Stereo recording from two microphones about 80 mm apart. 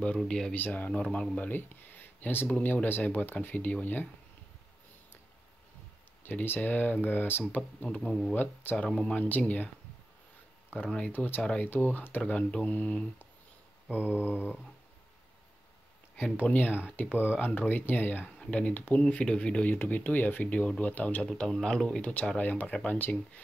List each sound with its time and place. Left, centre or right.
0.2 s speech: centre
0.6 s speech: left
6.2 s speech: left
8.0 s speech: centre
8.4 s speech: left
8.8 s speech: centre
10.7 s speech: left
12.2 s speech: centre
13.8 s mantra: left
14.2 s speech: left
16.3 s speech: left
21.3 s speech: centre; by 23.1 s left